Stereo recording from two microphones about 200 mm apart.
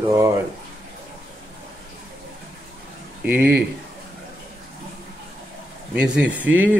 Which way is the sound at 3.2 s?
5° right (ahead or behind).